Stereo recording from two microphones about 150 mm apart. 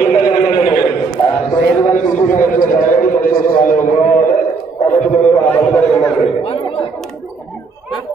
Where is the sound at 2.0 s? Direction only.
60° left (ahead or behind).